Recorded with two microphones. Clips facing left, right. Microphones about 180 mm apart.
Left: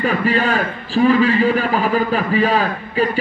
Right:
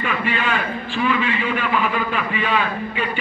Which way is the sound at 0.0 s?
40° left (ahead or behind).